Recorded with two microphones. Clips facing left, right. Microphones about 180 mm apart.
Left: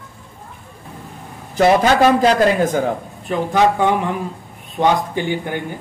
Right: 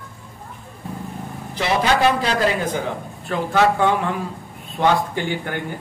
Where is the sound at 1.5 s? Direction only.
45° left (ahead or behind).